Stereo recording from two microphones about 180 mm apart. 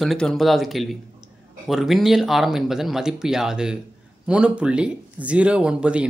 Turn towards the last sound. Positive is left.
turn(degrees=-5)  # may be behind; listen again after turning